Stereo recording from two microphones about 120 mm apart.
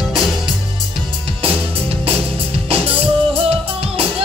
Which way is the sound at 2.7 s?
55° right (ahead or behind).